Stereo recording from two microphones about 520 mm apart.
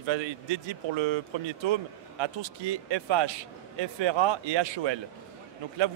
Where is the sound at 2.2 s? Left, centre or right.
Right.